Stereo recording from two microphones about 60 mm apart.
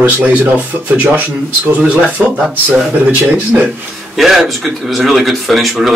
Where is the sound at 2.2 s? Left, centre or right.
Centre.